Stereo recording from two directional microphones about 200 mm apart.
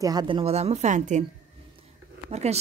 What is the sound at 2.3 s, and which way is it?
Speech, 30° right (ahead or behind).